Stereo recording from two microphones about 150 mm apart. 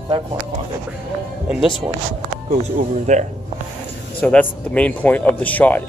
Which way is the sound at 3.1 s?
50° right (ahead or behind).